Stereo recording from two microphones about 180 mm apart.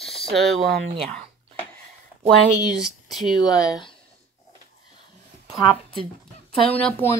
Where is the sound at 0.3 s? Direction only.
Centre (ahead or behind).